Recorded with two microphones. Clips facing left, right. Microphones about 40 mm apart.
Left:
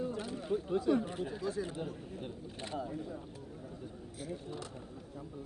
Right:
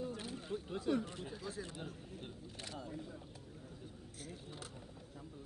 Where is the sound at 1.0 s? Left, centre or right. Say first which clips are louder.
Left 8 dB; centre.